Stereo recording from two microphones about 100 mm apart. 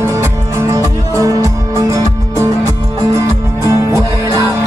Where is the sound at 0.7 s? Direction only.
35° right (ahead or behind).